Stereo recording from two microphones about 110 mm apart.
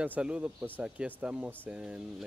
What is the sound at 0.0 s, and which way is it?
Speech, 10° right (ahead or behind).